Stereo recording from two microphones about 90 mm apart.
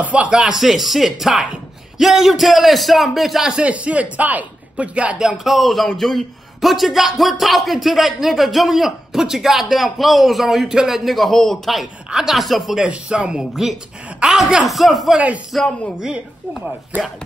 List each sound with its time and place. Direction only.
0.0 s a man's voice: 15° right (ahead or behind)
5.4 s a man's voice: centre (ahead or behind)